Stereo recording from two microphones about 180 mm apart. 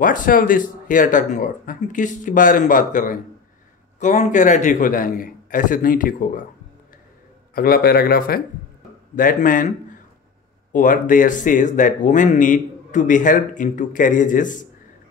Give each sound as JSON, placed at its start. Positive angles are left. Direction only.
{"t": 0.0, "sound": "a man's voice", "side_deg": 50}
{"t": 7.5, "sound": "a man's voice", "side_deg": 55}
{"t": 10.7, "sound": "a man's voice", "side_deg": 45}